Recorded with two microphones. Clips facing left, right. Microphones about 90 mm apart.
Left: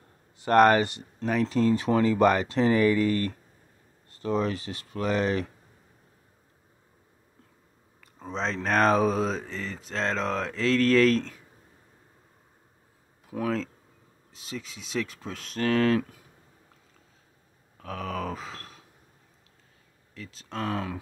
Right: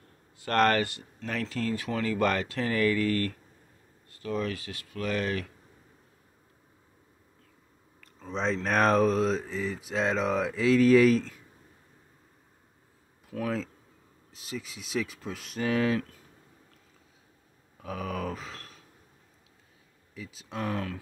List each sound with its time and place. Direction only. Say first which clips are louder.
0.4 s speech: left 5 dB; 15° left (ahead or behind)
8.3 s speech: right 1 dB; 5° right (ahead or behind)
8.6 s mantra: left 1 dB; centre (ahead or behind)
13.3 s speech: left 2 dB; 15° left (ahead or behind)
14.3 s speech: even; centre (ahead or behind)
17.7 s grunt: left 1 dB; 5° right (ahead or behind)
20.2 s mantra: left 1 dB; 5° right (ahead or behind)